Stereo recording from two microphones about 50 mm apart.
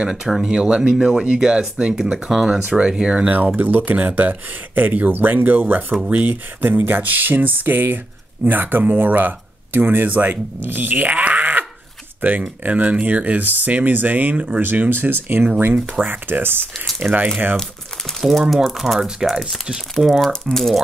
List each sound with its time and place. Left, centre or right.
0.0 s speech: centre
3.3 s speech: right
11.1 s groan: right
12.2 s speech: right
14.6 s speech: right
16.1 s speech: right
17.0 s speech: right
18.5 s speech: centre
18.9 s speech: centre
20.4 s speech: centre